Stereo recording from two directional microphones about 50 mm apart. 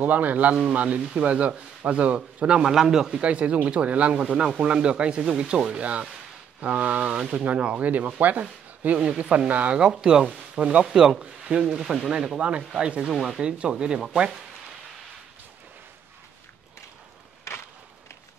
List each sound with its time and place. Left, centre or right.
0.0 s speech: right; by 3.2 s centre
3.2 s speech: right
7.8 s speech: right
8.9 s speech: centre
10.9 s speech: centre
11.8 s speech: centre
12.4 s speech: right
13.0 s speech: centre
13.4 s speech: centre